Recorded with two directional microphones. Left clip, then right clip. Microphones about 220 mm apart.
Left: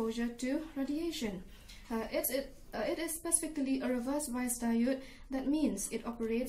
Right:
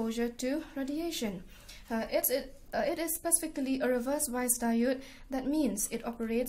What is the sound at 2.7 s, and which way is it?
A woman's voice, 50° right (ahead or behind).